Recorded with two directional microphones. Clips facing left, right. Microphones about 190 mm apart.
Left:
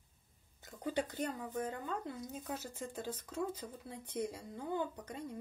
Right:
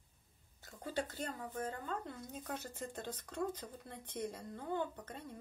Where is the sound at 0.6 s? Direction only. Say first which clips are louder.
Left 3 dB; 15° left (ahead or behind).